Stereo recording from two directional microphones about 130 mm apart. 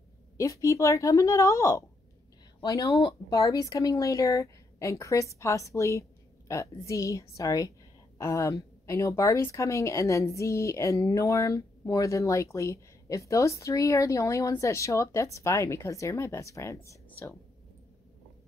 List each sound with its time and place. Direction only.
0.4 s a woman's voice: 25° left (ahead or behind)